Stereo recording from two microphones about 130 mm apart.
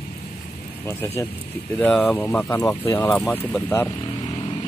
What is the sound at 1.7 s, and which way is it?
Speech, 10° left (ahead or behind).